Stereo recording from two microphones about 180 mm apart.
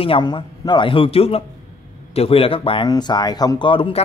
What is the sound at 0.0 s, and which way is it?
A man's voice, 25° left (ahead or behind).